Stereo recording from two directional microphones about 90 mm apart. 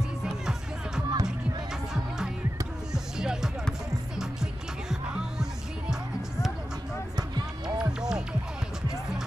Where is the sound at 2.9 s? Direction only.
5° right (ahead or behind).